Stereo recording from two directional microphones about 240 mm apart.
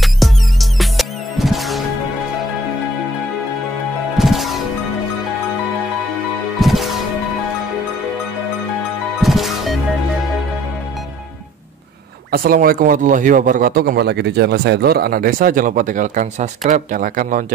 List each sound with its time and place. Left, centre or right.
0.0 s music: centre
4.2 s music: centre
6.6 s music: centre
9.2 s music: centre
12.3 s a man's voice: right